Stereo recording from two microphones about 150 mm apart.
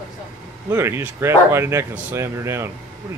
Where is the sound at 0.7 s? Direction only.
15° right (ahead or behind).